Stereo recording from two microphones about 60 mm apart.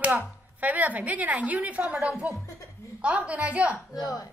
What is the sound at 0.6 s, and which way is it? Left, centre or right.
A woman's voice, right.